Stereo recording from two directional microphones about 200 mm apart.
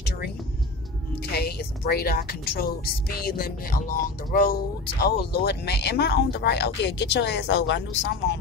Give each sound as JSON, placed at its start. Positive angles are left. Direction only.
{"t": 1.3, "sound": "a woman's voice", "side_deg": 50}